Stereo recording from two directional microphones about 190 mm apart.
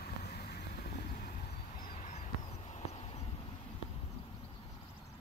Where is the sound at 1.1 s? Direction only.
50° left (ahead or behind); by 3.2 s 35° left (ahead or behind).